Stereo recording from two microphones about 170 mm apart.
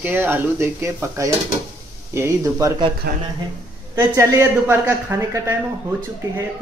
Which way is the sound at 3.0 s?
65° right (ahead or behind).